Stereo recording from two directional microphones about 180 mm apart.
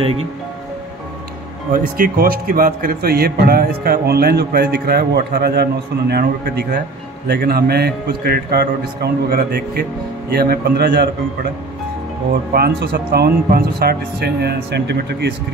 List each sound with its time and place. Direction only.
0.0 s speech: 30° right (ahead or behind)
1.7 s a man's voice: 55° right (ahead or behind)
12.5 s a man's voice: 60° right (ahead or behind)